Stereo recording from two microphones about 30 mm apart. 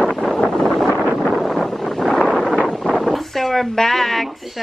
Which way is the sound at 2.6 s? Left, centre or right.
Left.